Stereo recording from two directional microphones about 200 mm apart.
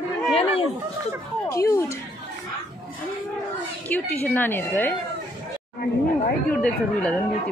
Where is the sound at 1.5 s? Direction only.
15° left (ahead or behind).